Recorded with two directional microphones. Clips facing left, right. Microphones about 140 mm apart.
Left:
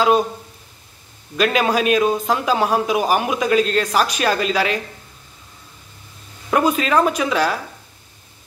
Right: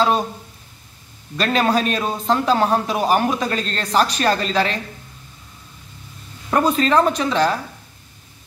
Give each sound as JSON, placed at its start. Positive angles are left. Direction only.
{"t": 1.3, "sound": "a man's voice", "side_deg": 10}
{"t": 6.5, "sound": "a man's voice", "side_deg": 10}